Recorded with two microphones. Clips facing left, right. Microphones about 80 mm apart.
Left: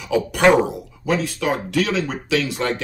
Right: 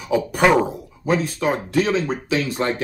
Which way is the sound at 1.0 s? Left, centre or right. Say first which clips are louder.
Right 1 dB; right.